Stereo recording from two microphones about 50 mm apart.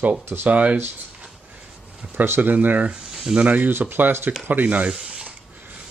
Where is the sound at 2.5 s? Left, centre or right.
Right.